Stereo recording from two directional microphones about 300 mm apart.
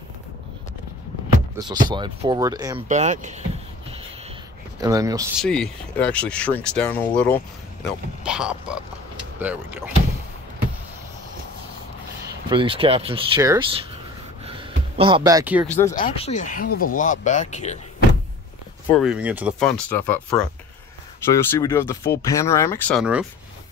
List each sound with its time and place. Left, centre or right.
1.6 s speech: centre
2.9 s speech: right
4.7 s speech: centre
5.4 s speech: centre
12.4 s speech: centre
15.0 s speech: centre
15.9 s speech: left
18.9 s speech: centre